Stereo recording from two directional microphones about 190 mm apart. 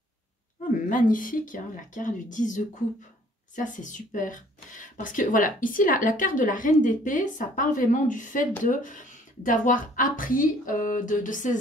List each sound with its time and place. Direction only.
0.8 s speech: 45° left (ahead or behind)